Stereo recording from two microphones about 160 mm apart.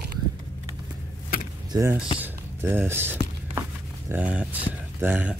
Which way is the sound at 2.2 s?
15° right (ahead or behind).